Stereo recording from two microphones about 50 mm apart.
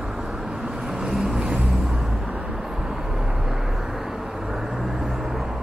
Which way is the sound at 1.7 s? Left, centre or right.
Centre.